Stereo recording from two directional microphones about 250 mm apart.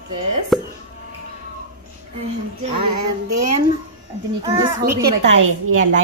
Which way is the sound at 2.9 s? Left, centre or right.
Right.